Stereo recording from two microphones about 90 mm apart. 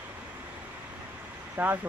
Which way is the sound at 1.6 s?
20° right (ahead or behind).